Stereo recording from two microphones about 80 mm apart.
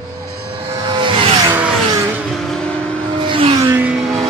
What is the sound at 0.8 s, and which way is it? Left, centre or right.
Vehicle, right.